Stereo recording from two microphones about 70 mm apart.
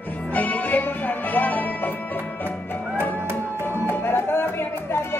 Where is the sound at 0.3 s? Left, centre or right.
Left.